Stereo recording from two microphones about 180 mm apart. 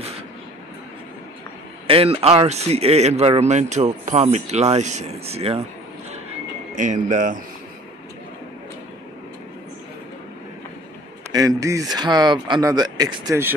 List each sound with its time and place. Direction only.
1.9 s speech: 30° right (ahead or behind)
6.8 s speech: 45° right (ahead or behind)
11.3 s speech: 20° right (ahead or behind)